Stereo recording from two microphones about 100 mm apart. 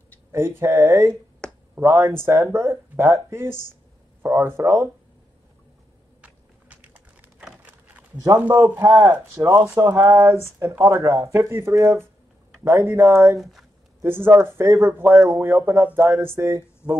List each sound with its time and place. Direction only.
0.3 s speech: 25° right (ahead or behind)
1.4 s a sound: 10° left (ahead or behind)
1.8 s speech: 25° right (ahead or behind)
6.2 s a sound: 15° right (ahead or behind)
8.8 s speech: 30° right (ahead or behind)
13.4 s speech: centre (ahead or behind)
14.0 s speech: 20° right (ahead or behind)